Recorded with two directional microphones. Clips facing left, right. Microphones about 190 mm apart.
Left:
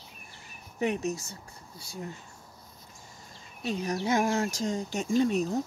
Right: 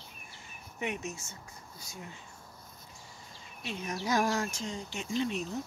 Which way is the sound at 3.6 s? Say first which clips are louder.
Left 7 dB; 35° left (ahead or behind).